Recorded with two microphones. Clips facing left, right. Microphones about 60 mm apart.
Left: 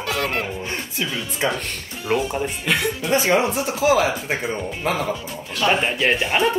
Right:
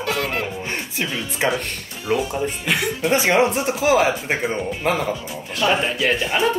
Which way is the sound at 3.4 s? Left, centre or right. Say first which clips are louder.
Right 2 dB; right.